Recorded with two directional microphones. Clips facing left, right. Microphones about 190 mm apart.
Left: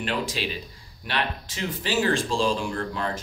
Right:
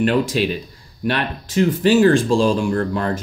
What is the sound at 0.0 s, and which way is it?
Speech, 55° right (ahead or behind).